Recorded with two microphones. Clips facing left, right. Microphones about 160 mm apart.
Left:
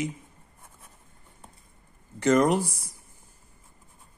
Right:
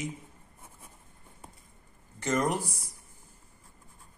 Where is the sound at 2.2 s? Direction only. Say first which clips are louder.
Left 8 dB; 90° left.